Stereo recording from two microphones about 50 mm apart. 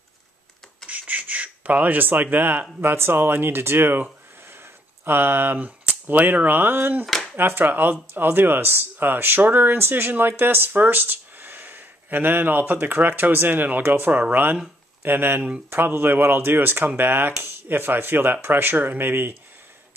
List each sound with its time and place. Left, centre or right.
0.8 s speech: right
5.0 s speech: right